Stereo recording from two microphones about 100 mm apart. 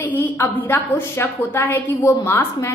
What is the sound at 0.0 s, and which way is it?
A woman's voice, 20° left (ahead or behind).